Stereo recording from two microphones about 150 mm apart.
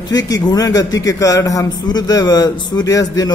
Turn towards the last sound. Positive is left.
turn(degrees=25)  # may be behind; listen again after turning